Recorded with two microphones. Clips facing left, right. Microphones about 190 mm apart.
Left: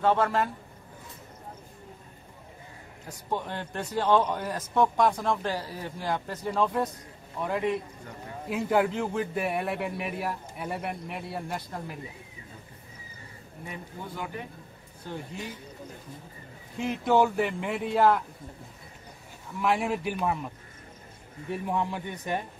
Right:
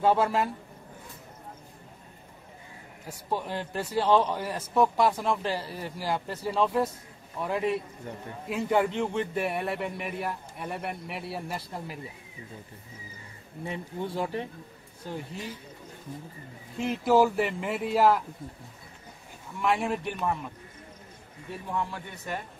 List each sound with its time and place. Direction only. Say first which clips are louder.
0.0 s speech: right 1 dB; 10° right (ahead or behind)
3.1 s a man's voice: right 1 dB; 10° right (ahead or behind)
13.7 s speech: right 6 dB; 30° right (ahead or behind)
16.7 s a man's voice: right 1 dB; centre (ahead or behind)
19.6 s a man's voice: left 1 dB; centre (ahead or behind)
21.6 s a man's voice: left 2 dB; 15° left (ahead or behind)